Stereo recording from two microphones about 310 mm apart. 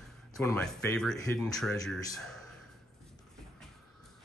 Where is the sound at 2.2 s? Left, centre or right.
Centre.